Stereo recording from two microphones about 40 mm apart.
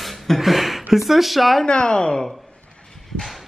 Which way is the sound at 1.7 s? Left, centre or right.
Left.